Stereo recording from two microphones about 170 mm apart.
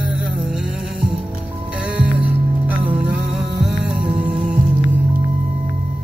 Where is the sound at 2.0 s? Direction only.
10° right (ahead or behind).